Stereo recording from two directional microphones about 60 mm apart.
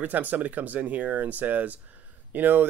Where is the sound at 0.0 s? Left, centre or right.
Right.